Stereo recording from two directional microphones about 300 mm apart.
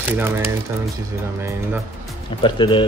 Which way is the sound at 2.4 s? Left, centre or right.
Centre.